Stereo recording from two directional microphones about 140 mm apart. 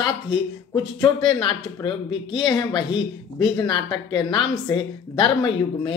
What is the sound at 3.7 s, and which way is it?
Speech, 30° left (ahead or behind).